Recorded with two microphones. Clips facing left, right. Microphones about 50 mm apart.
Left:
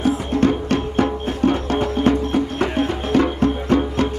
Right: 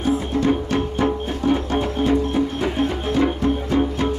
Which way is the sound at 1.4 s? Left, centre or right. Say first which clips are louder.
Left 2 dB; left.